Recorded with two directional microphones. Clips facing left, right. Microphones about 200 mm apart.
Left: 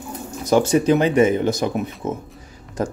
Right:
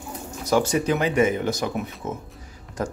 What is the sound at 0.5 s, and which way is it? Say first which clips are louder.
A man's voice: left 5 dB; 25° left (ahead or behind).